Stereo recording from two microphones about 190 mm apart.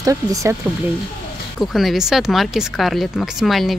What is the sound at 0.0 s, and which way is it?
Speech, 20° right (ahead or behind).